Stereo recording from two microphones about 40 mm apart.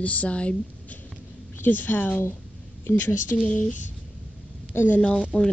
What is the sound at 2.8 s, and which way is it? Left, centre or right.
Speech, left.